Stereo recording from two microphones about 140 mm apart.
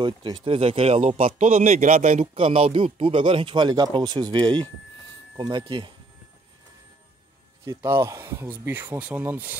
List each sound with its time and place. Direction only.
0.0 s speech: 35° right (ahead or behind); by 2.2 s 55° right (ahead or behind)
2.3 s speech: 45° right (ahead or behind)
7.6 s speech: 20° right (ahead or behind)